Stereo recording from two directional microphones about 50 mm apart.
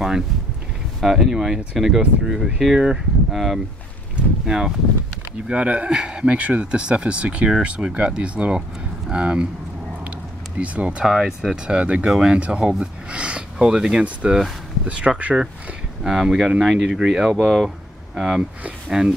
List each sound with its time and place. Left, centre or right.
1.0 s speech: centre
5.5 s speech: right
10.6 s speech: right
11.1 s speech: centre
11.6 s speech: right
12.1 s speech: centre
12.8 s a sound: right
14.2 s speech: centre
14.9 s speech: right
16.0 s speech: centre